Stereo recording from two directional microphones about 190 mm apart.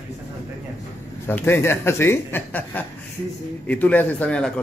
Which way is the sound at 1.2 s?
10° left (ahead or behind).